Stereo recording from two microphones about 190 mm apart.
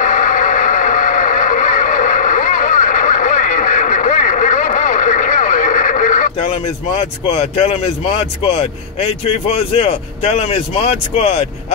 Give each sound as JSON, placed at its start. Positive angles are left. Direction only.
{"t": 0.0, "sound": "vehicle", "side_deg": 40}
{"t": 7.0, "sound": "speech", "side_deg": 30}